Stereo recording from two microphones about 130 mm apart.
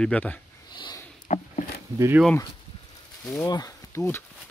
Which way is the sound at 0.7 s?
35° left (ahead or behind).